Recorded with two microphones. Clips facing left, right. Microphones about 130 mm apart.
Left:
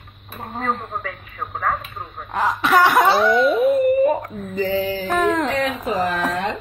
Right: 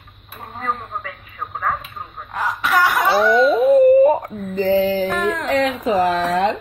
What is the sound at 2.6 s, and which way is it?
Laughter, 25° left (ahead or behind).